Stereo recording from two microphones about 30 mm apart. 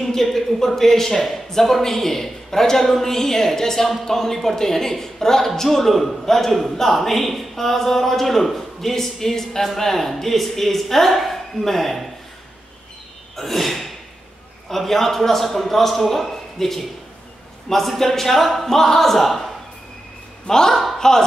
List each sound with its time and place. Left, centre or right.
0.0 s speech: centre
13.4 s gasp: centre
14.7 s a man's voice: centre
18.7 s speech: centre
20.4 s a man's voice: left